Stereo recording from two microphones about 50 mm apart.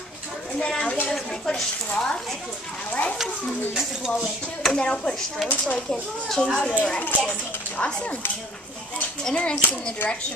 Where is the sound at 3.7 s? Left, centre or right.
Centre.